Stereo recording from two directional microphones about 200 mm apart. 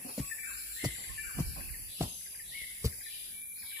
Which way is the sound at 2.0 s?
10° right (ahead or behind).